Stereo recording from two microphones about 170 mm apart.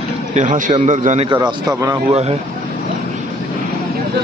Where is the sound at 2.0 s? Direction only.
40° right (ahead or behind).